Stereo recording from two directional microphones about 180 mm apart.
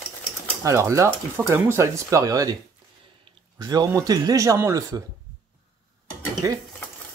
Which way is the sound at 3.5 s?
20° right (ahead or behind).